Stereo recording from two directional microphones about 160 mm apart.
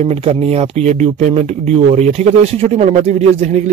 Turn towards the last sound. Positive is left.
turn(degrees=-45)  # may be behind; listen again after turning